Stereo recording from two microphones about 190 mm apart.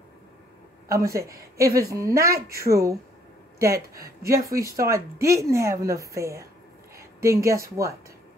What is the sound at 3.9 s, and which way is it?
A woman's voice, 15° right (ahead or behind).